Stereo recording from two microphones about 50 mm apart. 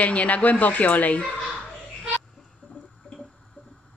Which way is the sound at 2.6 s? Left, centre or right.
Left.